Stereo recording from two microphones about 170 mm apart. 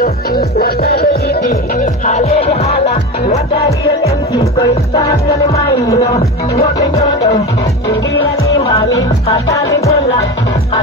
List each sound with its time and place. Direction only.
0.0 s music: 65° left (ahead or behind); by 3.6 s 35° left (ahead or behind)
4.6 s music: 20° left (ahead or behind)
8.9 s music: 20° left (ahead or behind)